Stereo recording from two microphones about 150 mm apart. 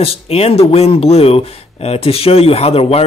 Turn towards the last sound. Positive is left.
turn(degrees=40)  # may be behind; listen again after turning